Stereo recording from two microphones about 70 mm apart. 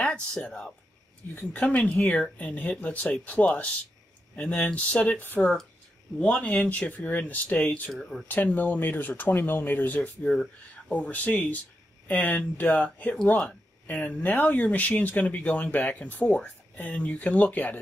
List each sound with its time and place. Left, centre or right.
0.0 s speech: centre
1.3 s speech: left
8.0 s speech: centre
8.3 s speech: left
9.9 s speech: centre